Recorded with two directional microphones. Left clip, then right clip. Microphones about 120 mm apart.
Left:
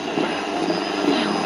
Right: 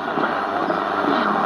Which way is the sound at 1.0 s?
40° right (ahead or behind).